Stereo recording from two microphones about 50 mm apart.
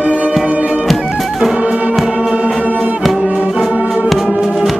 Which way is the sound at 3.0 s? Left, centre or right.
Centre.